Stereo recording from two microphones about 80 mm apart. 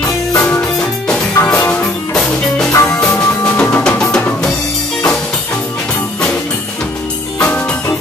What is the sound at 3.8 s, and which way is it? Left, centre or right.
Drum, centre.